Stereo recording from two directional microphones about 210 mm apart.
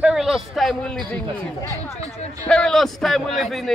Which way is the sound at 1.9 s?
30° left (ahead or behind).